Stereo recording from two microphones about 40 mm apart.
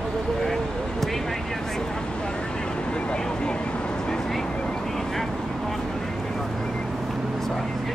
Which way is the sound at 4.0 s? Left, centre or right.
Centre.